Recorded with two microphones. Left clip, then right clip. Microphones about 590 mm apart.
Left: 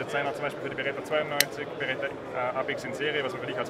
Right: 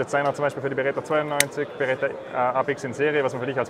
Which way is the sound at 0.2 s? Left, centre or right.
Right.